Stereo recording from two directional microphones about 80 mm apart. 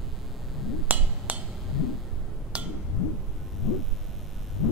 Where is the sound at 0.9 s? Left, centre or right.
Centre.